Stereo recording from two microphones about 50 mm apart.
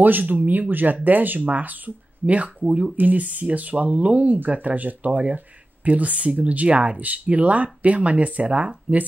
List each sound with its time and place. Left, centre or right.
0.0 s speech: right